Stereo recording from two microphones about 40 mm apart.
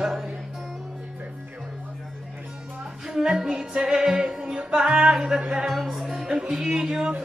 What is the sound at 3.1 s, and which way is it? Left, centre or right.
Speech, centre.